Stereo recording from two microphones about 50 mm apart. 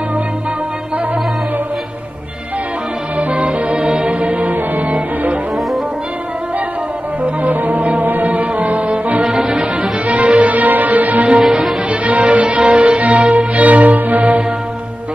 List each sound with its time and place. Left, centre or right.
3.2 s music: right
7.2 s music: right
9.2 s music: centre
9.5 s music: right
11.4 s music: centre
11.9 s music: right